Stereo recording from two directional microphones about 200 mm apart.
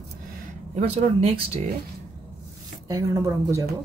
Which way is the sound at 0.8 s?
30° right (ahead or behind).